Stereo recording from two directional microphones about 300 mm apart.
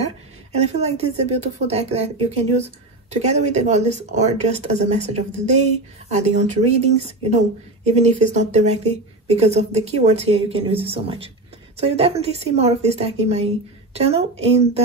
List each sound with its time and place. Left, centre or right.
0.0 s speech: right